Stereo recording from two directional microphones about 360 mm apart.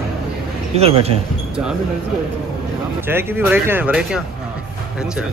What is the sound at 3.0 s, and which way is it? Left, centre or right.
Speech, centre.